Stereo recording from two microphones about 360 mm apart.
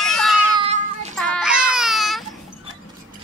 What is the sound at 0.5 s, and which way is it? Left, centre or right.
Cat, centre.